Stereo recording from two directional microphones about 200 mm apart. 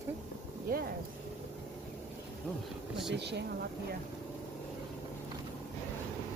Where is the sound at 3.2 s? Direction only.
60° right (ahead or behind).